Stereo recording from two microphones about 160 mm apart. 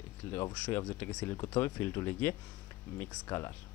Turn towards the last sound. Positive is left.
turn(degrees=20)  # may be behind; listen again after turning